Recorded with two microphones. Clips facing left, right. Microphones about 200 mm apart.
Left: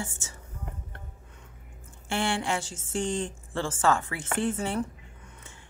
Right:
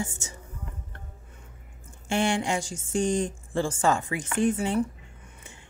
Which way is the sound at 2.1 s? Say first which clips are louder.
Right 3 dB; 15° right (ahead or behind).